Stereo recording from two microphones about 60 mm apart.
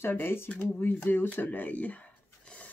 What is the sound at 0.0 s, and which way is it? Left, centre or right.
Speech, left.